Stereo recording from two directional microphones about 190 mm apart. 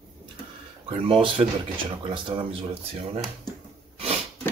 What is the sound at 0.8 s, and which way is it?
Speech, 30° right (ahead or behind).